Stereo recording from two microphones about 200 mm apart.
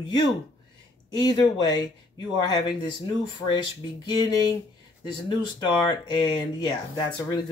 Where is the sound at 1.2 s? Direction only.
20° left (ahead or behind).